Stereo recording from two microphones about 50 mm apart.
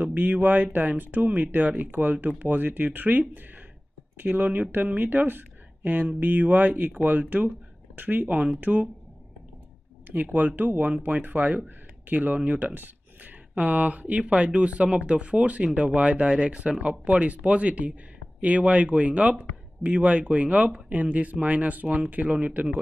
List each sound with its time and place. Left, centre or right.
0.0 s speech: right
10.0 s speech: right